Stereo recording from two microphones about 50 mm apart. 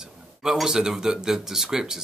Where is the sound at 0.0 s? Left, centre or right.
Centre.